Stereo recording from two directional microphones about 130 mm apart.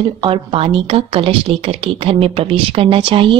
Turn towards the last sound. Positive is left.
turn(degrees=-45)  # may be behind; listen again after turning